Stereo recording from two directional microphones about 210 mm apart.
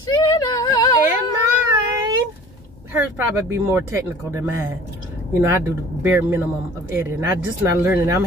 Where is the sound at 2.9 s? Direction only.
10° right (ahead or behind).